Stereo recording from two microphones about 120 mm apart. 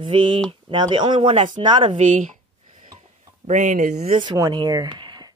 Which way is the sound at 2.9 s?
80° right.